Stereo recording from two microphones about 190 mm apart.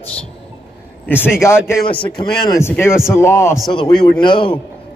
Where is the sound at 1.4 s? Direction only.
15° left (ahead or behind).